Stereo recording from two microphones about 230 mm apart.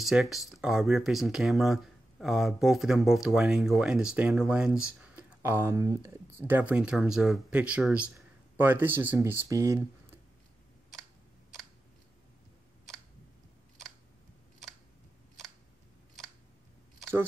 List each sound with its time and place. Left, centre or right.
0.0 s speech: centre
17.0 s keys jangling: centre